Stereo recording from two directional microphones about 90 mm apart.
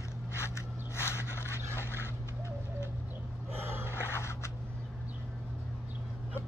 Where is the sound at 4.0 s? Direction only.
30° left (ahead or behind).